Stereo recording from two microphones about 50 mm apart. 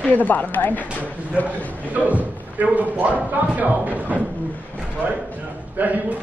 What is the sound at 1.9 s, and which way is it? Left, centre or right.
Speech, right.